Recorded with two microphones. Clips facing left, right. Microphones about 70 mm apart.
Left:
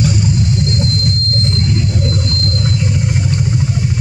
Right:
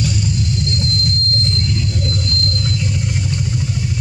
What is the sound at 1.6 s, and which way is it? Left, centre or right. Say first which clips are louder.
Vehicle: left 4 dB; left.